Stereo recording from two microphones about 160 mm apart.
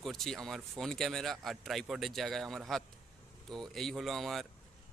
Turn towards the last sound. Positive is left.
turn(degrees=0)  # may be behind; listen again after turning